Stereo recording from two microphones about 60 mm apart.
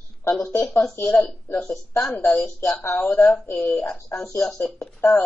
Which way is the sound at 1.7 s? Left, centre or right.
Left.